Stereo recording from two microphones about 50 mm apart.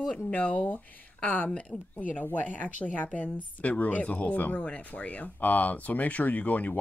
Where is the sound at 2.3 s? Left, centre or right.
Left.